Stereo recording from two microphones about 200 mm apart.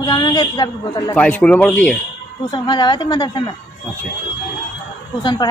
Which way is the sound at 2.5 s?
25° left (ahead or behind).